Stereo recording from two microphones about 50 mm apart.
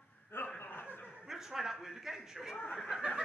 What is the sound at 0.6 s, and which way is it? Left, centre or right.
Chuckle, left.